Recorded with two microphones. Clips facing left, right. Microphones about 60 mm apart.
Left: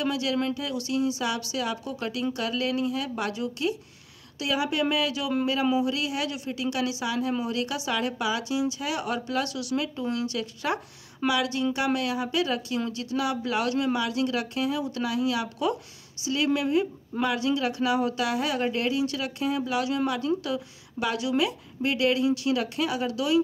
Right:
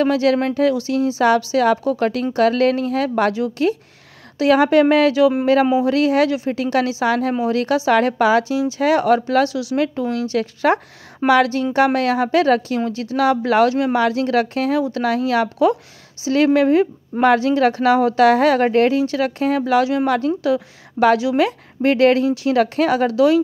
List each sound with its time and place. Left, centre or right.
0.0 s speech: right
0.8 s a woman's voice: right
1.6 s a woman's voice: right
13.1 s a woman's voice: right
18.9 s a woman's voice: right